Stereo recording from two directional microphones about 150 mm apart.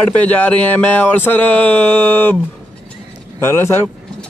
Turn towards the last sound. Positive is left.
turn(degrees=15)  # may be behind; listen again after turning